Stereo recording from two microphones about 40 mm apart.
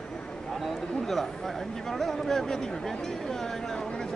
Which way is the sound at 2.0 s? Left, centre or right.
Centre.